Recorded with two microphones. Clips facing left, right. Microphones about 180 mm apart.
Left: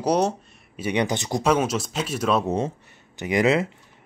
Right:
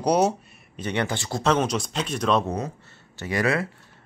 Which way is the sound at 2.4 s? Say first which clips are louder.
Left 4 dB; 25° left (ahead or behind).